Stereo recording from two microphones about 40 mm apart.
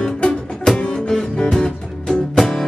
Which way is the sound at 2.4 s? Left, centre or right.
Centre.